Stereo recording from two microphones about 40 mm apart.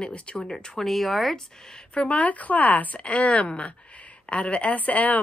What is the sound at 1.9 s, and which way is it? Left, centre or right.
Speech, left.